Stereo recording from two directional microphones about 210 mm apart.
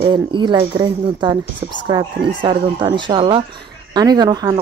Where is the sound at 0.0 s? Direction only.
20° right (ahead or behind).